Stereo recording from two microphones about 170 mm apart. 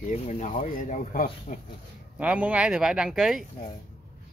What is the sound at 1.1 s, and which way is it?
Speech, 55° left (ahead or behind).